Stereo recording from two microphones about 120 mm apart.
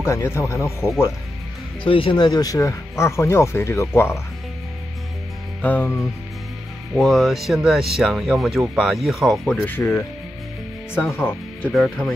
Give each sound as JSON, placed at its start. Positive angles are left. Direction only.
{"t": 0.0, "sound": "speech", "side_deg": 20}
{"t": 1.8, "sound": "speech", "side_deg": 45}
{"t": 5.6, "sound": "music", "side_deg": 15}
{"t": 7.0, "sound": "speech", "side_deg": 0}
{"t": 9.7, "sound": "speech", "side_deg": 20}
{"t": 11.7, "sound": "speech", "side_deg": 0}